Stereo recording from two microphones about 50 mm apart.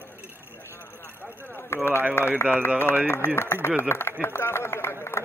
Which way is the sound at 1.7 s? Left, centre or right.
Left.